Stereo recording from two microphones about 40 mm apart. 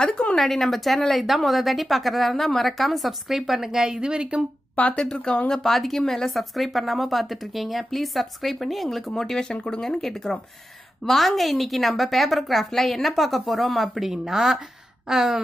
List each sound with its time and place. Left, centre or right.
0.4 s a woman's voice: centre
4.0 s a woman's voice: right
4.9 s speech: left
5.5 s a woman's voice: centre
9.0 s a woman's voice: centre
15.0 s gasp: centre